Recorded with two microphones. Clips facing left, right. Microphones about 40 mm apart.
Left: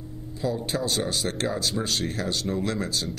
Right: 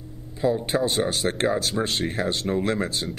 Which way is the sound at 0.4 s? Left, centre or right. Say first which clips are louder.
Right 5 dB; right.